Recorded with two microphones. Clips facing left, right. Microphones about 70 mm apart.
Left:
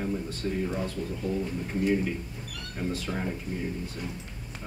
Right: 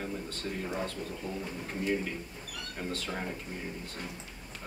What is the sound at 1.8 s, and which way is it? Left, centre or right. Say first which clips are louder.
Speech: left 5 dB; centre.